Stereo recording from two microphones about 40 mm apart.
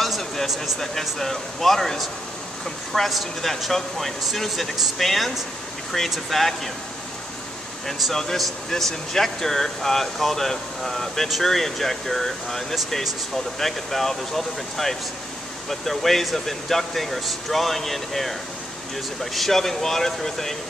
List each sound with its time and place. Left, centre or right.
0.0 s a sound: centre
0.7 s speech: centre
7.8 s speech: centre
19.3 s speech: centre